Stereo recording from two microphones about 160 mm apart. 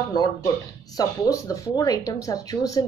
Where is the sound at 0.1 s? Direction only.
25° left (ahead or behind).